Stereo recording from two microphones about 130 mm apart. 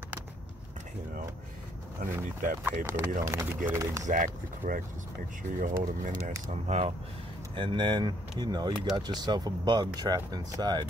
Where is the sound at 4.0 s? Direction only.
80° right.